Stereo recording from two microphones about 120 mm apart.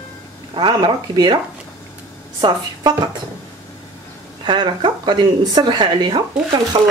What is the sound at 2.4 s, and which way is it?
Speech, 35° right (ahead or behind).